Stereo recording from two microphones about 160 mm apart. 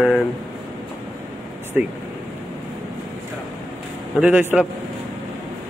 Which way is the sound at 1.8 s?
5° right (ahead or behind).